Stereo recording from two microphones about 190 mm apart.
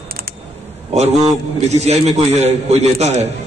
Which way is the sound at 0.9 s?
35° right (ahead or behind).